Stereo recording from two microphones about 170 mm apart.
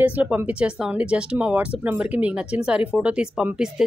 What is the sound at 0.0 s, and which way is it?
Speech, 10° right (ahead or behind).